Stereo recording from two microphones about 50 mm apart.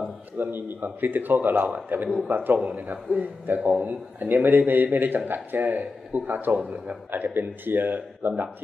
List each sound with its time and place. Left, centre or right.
0.4 s a man's voice: right
7.1 s a man's voice: right